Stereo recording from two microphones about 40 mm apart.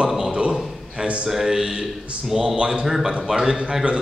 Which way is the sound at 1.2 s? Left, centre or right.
Centre.